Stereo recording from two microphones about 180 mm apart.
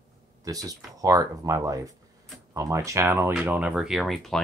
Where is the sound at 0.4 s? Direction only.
20° right (ahead or behind).